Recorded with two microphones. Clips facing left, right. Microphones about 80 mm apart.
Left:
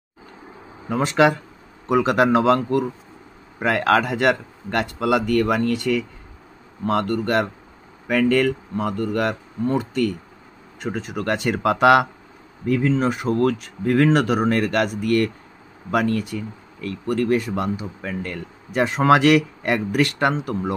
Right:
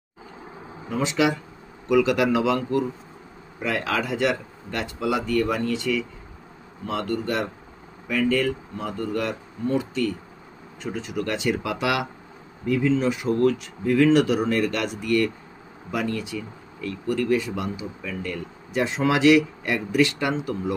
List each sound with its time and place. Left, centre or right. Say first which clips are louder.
0.8 s speech: left 5 dB; left
10.8 s speech: left 2 dB; left